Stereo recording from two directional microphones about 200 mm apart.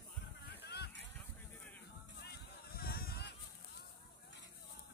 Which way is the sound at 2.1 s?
55° left (ahead or behind).